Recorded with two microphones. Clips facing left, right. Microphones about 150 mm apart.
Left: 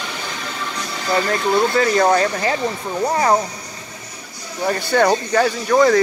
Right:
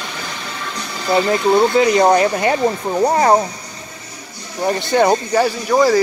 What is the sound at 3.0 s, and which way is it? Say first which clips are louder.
Speech: right 4 dB; 35° right (ahead or behind).